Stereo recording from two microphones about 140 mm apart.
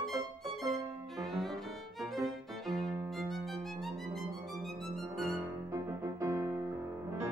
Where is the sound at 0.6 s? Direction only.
25° right (ahead or behind).